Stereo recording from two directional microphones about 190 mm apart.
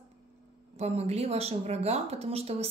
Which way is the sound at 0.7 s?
35° right (ahead or behind).